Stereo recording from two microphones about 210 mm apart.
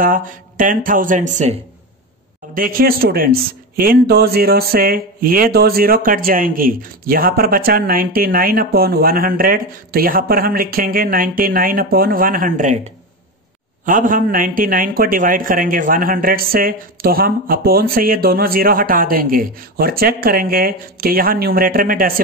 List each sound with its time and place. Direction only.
0.0 s speech: 40° right (ahead or behind)
13.8 s speech: 40° right (ahead or behind)